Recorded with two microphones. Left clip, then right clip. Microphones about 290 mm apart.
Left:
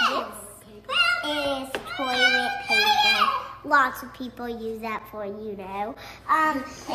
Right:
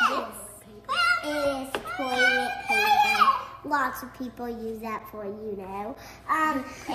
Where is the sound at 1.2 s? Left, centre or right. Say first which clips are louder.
Left 1 dB; centre.